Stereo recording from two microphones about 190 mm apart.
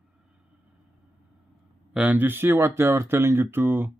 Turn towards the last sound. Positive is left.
turn(degrees=-10)  # may be behind; listen again after turning